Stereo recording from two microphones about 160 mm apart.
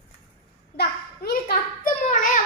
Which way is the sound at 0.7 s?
75° left (ahead or behind).